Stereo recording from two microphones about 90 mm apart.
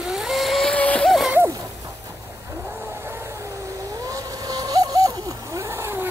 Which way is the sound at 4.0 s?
40° right (ahead or behind).